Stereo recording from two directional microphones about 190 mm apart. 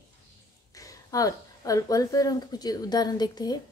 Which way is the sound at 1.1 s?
20° left (ahead or behind).